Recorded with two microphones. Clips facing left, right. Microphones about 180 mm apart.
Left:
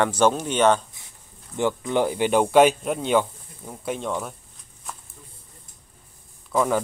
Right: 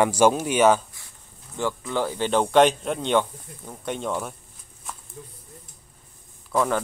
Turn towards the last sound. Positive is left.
turn(degrees=0)  # may be behind; listen again after turning